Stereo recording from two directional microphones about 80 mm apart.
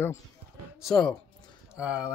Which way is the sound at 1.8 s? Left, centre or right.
Centre.